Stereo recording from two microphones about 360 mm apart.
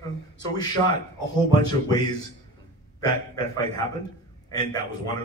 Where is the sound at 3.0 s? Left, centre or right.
Centre.